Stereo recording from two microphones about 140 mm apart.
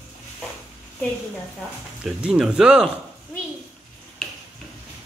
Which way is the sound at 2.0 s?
5° right (ahead or behind).